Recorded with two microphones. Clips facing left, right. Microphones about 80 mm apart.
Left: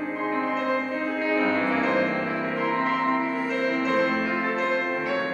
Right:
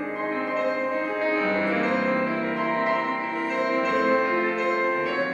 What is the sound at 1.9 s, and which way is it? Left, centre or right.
Music, centre.